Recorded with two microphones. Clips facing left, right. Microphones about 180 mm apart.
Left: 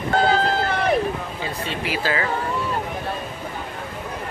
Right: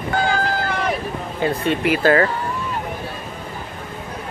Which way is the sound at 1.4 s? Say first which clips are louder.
Right 11 dB; 55° right (ahead or behind).